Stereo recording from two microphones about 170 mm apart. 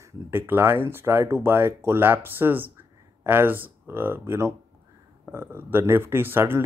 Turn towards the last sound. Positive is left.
turn(degrees=-15)  # may be behind; listen again after turning